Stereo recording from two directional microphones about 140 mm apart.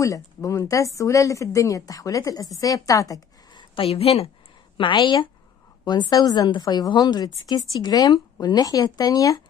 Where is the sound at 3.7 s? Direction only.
45° left (ahead or behind).